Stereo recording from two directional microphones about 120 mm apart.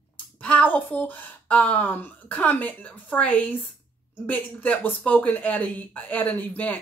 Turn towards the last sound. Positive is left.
turn(degrees=15)  # may be behind; listen again after turning